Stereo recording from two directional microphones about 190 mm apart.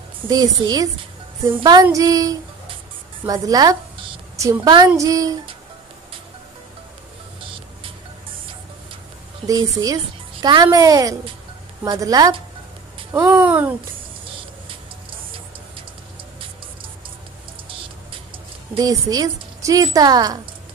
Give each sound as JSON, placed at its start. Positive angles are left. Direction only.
{"t": 0.3, "sound": "a woman's voice", "side_deg": -20}
{"t": 1.5, "sound": "female singing", "side_deg": -20}
{"t": 3.3, "sound": "a woman's voice", "side_deg": -20}
{"t": 9.5, "sound": "a woman's voice", "side_deg": -20}
{"t": 13.1, "sound": "female singing", "side_deg": -10}
{"t": 18.8, "sound": "a woman's voice", "side_deg": -20}